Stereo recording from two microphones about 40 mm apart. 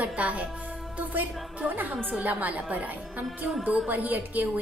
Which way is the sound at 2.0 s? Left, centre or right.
Right.